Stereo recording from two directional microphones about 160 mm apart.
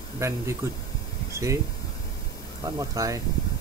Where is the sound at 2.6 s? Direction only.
20° right (ahead or behind).